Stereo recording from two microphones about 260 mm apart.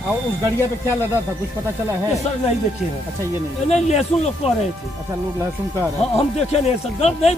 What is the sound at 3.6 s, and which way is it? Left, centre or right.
Speech, left.